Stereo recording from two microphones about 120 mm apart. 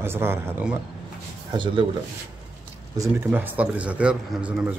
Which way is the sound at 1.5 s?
40° right (ahead or behind).